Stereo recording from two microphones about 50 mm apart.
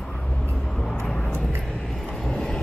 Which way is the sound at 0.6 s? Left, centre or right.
Centre.